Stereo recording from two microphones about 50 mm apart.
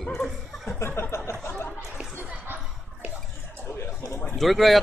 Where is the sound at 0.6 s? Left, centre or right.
Left.